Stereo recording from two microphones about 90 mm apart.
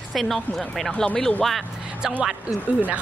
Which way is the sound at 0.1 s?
Centre (ahead or behind).